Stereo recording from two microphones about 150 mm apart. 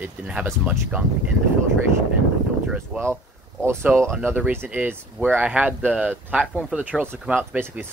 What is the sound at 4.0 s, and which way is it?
Speech, centre (ahead or behind).